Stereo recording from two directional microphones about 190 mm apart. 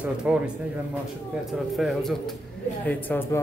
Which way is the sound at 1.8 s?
Centre (ahead or behind).